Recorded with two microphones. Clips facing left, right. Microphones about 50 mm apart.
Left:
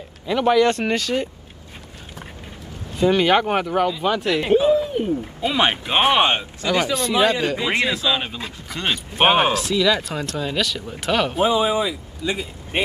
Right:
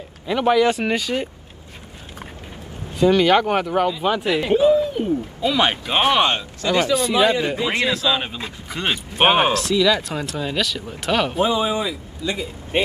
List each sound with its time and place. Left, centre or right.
0.3 s speech: centre
3.0 s speech: centre
4.5 s speech: left
7.2 s speech: centre
7.6 s speech: centre
8.1 s speech: centre
8.6 s speech: centre
11.3 s a man's voice: centre